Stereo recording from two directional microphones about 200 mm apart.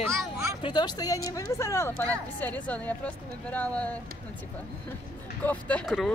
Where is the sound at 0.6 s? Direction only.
20° left (ahead or behind).